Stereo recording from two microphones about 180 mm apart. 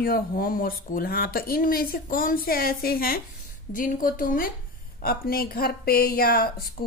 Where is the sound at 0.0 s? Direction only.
55° left (ahead or behind).